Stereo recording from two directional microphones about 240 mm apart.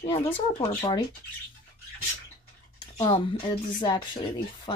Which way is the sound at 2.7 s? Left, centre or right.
Centre.